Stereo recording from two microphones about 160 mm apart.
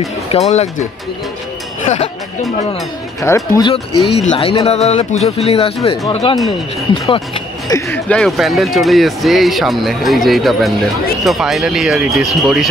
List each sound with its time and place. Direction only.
0.3 s speech: 40° left (ahead or behind)
1.9 s speech: 50° left (ahead or behind)
3.2 s speech: 20° left (ahead or behind)
4.1 s speech: 35° left (ahead or behind)
7.7 s speech: 10° left (ahead or behind)